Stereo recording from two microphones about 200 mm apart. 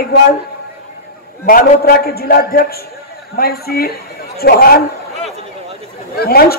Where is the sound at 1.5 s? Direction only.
50° left (ahead or behind).